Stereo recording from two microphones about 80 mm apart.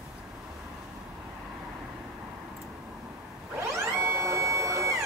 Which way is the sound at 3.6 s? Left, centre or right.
Right.